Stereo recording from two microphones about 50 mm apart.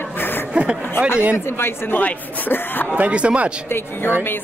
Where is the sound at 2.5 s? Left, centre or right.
Left.